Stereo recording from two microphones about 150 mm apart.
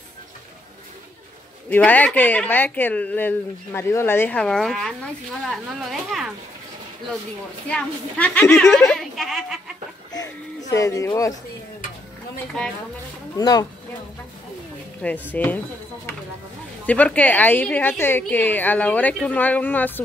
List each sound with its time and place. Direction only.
1.7 s a woman's voice: 10° left (ahead or behind)
7.6 s a woman's voice: 10° left (ahead or behind)
10.7 s speech: 20° left (ahead or behind)
13.4 s speech: 25° left (ahead or behind)
15.0 s speech: 10° left (ahead or behind)
16.8 s speech: 10° left (ahead or behind)